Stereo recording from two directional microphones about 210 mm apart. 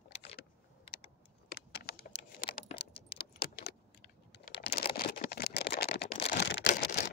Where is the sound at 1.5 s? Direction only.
45° left (ahead or behind).